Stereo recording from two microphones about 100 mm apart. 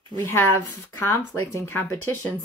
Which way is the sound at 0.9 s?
25° left (ahead or behind).